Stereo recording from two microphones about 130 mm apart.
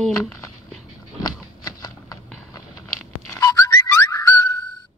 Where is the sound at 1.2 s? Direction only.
30° left (ahead or behind).